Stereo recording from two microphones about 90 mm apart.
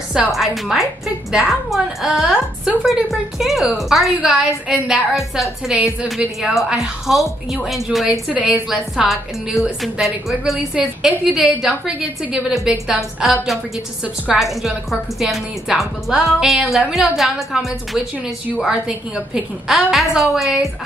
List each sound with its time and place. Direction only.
0.3 s a woman's voice: centre (ahead or behind)
8.3 s a woman's voice: 15° right (ahead or behind)
8.6 s a woman's voice: 5° right (ahead or behind)
14.4 s a woman's voice: centre (ahead or behind)